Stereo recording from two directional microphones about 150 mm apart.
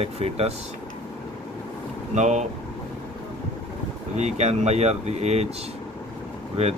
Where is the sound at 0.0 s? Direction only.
40° right (ahead or behind).